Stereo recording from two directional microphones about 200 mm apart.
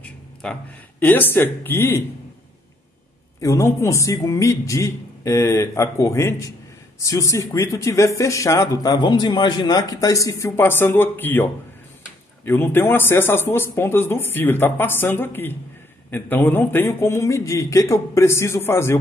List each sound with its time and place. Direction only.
0.0 s speech: 5° left (ahead or behind)
3.3 s speech: 15° left (ahead or behind)
12.4 s speech: 10° left (ahead or behind)